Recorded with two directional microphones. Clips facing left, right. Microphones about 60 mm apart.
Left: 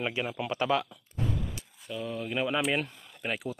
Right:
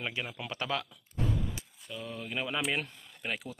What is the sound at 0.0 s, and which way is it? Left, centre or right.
Speech, centre.